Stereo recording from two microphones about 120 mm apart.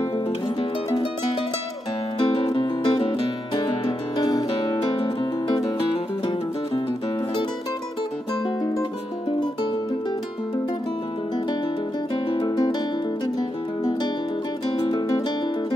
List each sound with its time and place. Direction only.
0.6 s music: 35° left (ahead or behind)
2.1 s music: 45° left (ahead or behind)
12.3 s music: 40° left (ahead or behind)